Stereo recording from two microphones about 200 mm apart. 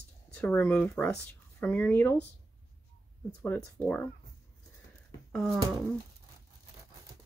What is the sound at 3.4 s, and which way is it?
Speech, 10° left (ahead or behind).